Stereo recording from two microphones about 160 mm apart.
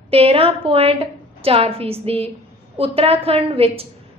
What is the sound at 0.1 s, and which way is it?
A woman's voice, 35° right (ahead or behind).